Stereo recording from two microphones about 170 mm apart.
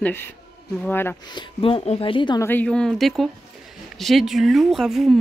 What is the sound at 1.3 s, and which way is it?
Speech, 30° left (ahead or behind).